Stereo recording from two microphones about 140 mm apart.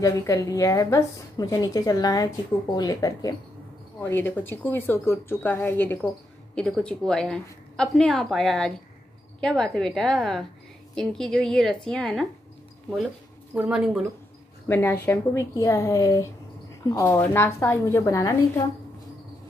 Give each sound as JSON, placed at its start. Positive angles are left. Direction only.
{"t": 0.0, "sound": "a woman's voice", "side_deg": 25}
{"t": 6.5, "sound": "a woman's voice", "side_deg": 5}
{"t": 13.6, "sound": "speech", "side_deg": -10}
{"t": 14.7, "sound": "a woman's voice", "side_deg": 15}